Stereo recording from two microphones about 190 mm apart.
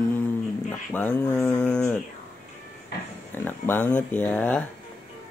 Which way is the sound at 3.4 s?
10° left (ahead or behind).